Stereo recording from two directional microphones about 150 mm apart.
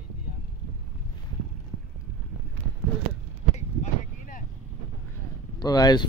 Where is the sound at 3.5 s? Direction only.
55° left (ahead or behind).